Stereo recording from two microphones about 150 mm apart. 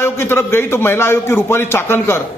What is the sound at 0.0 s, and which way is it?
Speech, 15° left (ahead or behind).